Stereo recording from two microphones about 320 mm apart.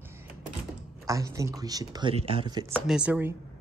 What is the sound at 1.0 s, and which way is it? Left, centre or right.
Speech, centre.